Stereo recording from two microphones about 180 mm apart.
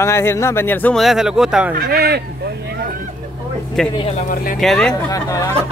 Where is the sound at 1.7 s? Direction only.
55° right (ahead or behind).